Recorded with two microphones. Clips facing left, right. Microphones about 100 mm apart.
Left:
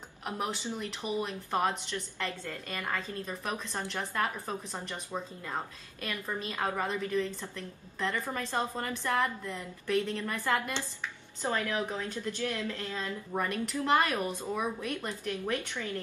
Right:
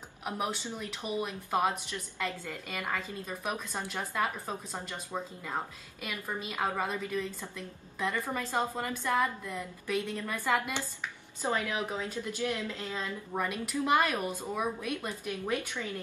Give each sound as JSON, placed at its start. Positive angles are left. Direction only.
{"t": 1.0, "sound": "a woman's voice", "side_deg": -10}
{"t": 13.3, "sound": "a woman's voice", "side_deg": -5}